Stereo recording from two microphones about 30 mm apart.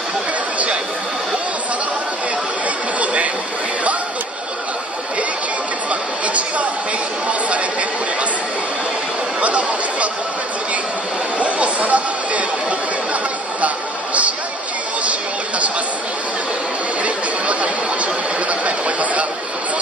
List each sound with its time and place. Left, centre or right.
5.9 s chatter: right
9.4 s chatter: right
11.3 s chatter: right
17.0 s chatter: right
18.5 s a sound: right